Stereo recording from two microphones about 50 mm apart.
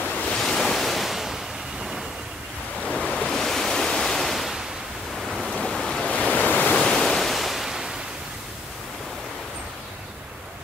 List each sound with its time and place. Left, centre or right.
0.1 s waves: left
0.4 s waves: centre
3.0 s waves: centre
5.1 s ocean: centre
5.6 s waves: centre
6.0 s waves: left
6.8 s waves: centre